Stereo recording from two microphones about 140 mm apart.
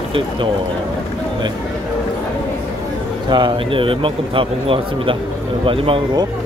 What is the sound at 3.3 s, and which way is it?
Speech, 35° right (ahead or behind).